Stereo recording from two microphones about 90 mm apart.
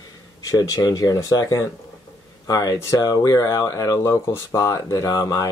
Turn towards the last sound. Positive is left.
turn(degrees=40)  # may be behind; listen again after turning